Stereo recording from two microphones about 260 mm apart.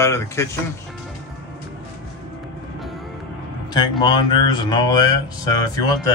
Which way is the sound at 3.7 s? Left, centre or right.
Centre.